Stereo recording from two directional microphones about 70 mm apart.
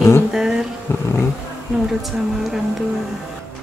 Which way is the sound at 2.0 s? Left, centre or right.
Centre.